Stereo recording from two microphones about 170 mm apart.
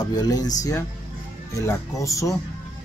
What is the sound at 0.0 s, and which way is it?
Speech, 20° left (ahead or behind).